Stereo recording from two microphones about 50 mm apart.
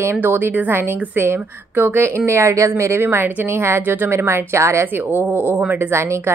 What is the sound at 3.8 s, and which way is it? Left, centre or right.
Speech, right.